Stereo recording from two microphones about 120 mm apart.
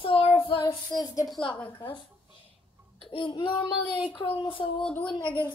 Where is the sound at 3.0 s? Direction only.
50° left (ahead or behind).